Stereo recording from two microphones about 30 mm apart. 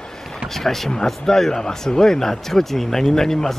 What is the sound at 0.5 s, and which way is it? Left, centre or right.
Speech, centre.